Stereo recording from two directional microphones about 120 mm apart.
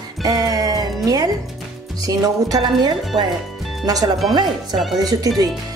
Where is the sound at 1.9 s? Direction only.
30° right (ahead or behind).